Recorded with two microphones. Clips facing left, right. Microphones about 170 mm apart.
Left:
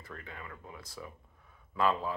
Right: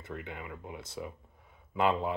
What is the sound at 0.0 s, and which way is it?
Speech, 20° right (ahead or behind).